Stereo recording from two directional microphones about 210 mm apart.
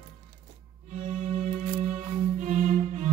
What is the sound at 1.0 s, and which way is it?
Music, 30° right (ahead or behind).